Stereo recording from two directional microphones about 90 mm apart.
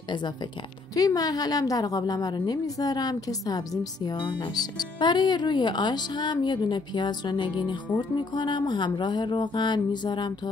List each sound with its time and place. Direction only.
0.9 s a woman's voice: 45° left (ahead or behind)